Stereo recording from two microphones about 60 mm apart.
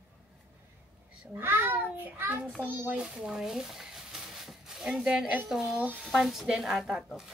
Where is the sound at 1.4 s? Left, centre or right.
Right.